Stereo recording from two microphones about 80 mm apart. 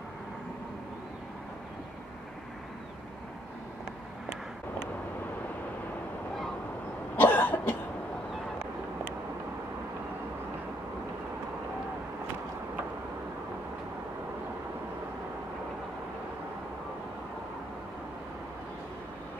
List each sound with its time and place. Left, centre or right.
7.2 s cough: left